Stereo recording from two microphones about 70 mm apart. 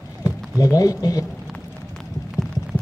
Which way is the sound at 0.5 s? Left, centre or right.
Left.